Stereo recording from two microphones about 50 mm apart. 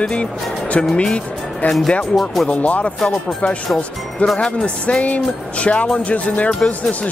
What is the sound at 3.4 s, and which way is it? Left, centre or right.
Speech, centre.